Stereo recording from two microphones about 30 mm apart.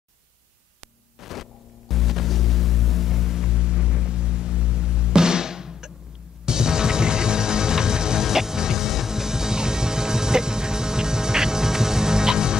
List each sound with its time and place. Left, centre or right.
1.2 s music: centre
3.4 s music: right